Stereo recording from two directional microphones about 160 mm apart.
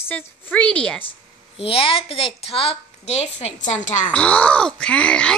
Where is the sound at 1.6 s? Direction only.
35° left (ahead or behind).